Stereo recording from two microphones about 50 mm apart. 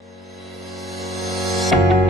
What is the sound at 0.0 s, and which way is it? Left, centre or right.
Music, centre.